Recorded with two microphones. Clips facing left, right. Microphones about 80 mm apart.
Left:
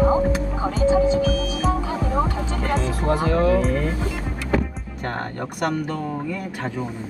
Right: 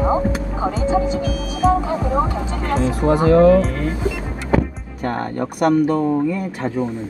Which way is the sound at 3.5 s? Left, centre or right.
Centre.